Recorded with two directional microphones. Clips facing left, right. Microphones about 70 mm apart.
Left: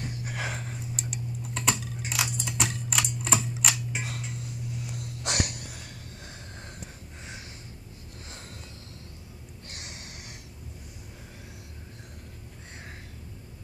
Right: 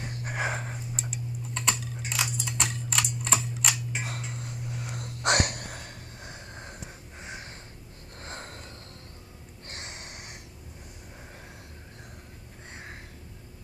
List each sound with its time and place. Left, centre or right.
0.2 s gasp: right
0.9 s typing: centre
2.3 s typewriter: centre
4.7 s a sound: right
8.2 s snort: right
9.7 s music: right